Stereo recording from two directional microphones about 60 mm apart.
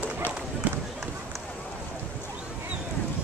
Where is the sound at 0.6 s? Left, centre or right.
Right.